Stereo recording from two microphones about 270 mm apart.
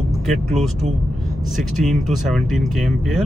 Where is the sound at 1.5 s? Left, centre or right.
Centre.